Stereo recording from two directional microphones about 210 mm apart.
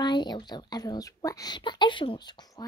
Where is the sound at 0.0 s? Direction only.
20° left (ahead or behind).